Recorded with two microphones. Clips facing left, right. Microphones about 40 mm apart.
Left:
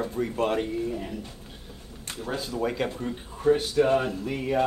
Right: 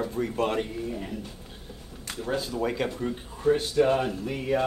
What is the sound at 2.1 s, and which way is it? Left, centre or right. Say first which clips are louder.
Speech: right 1 dB; centre.